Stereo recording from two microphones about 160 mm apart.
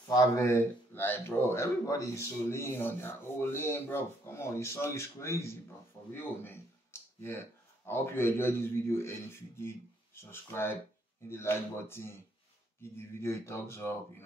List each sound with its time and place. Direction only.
0.1 s speech: 20° left (ahead or behind)